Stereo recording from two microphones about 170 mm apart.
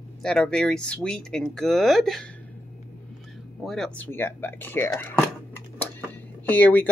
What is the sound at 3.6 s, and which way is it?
Speech, 5° left (ahead or behind).